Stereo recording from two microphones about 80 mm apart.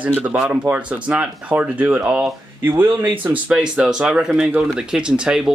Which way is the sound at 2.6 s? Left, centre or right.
Right.